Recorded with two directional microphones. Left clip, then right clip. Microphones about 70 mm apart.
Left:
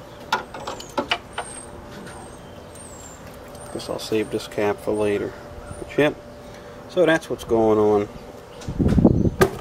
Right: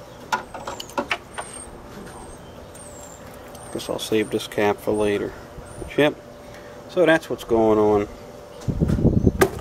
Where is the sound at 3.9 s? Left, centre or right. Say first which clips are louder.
Right 2 dB; right.